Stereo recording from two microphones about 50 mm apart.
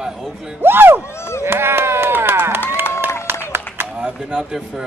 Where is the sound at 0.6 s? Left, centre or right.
Right.